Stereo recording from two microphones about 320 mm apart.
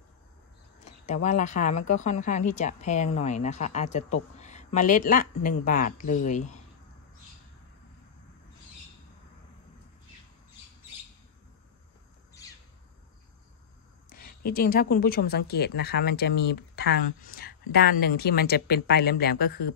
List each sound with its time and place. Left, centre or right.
0.8 s a woman's voice: left
14.0 s a woman's voice: left